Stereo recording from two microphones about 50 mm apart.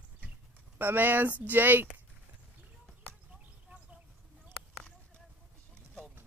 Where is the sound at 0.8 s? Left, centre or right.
Right.